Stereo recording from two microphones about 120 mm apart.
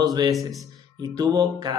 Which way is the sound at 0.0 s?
35° right (ahead or behind).